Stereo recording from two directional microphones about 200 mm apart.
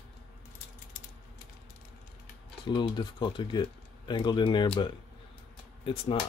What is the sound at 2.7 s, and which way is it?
Speech, 25° left (ahead or behind).